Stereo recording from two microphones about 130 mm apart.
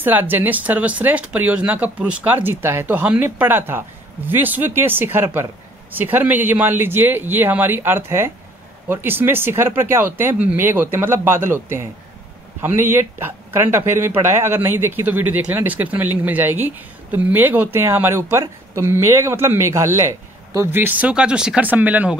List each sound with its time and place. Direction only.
0.0 s speech: 15° right (ahead or behind)
12.9 s speech: 15° right (ahead or behind)